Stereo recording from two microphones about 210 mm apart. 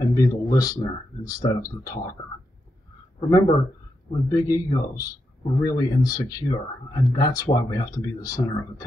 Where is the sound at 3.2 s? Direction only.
20° left (ahead or behind).